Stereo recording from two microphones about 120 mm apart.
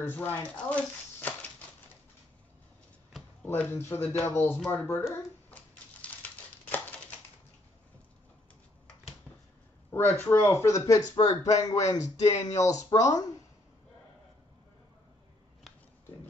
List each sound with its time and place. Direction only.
0.0 s speech: 15° left (ahead or behind)
3.4 s speech: 15° left (ahead or behind)
5.1 s a sound: 10° left (ahead or behind)
6.6 s typewriter: 10° left (ahead or behind)
9.8 s speech: 20° left (ahead or behind)